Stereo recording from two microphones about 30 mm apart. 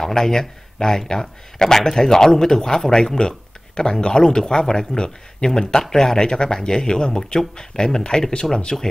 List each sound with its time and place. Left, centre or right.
0.1 s speech: centre
8.7 s speech: centre